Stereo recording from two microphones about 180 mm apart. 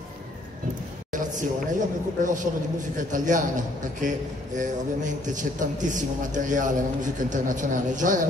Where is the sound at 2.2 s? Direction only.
45° right (ahead or behind).